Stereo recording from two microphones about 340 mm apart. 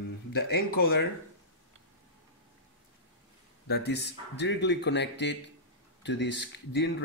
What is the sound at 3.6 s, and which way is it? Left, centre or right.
Speech, left.